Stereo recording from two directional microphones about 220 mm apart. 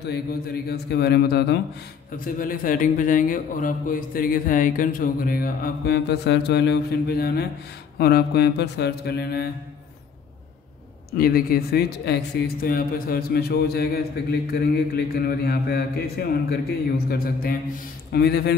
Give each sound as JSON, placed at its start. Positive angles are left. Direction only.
{"t": 0.0, "sound": "a man's voice", "side_deg": 45}
{"t": 11.1, "sound": "a man's voice", "side_deg": 45}